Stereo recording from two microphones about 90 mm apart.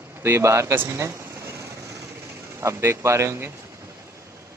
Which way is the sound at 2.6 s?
30° right (ahead or behind).